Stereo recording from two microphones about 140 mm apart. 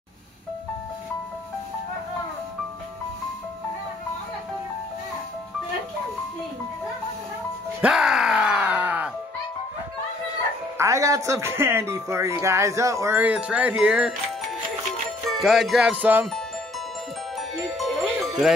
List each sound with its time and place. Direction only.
7.8 s groan: 5° right (ahead or behind)
10.8 s speech: 25° right (ahead or behind)
15.2 s music: centre (ahead or behind)
17.4 s music: centre (ahead or behind)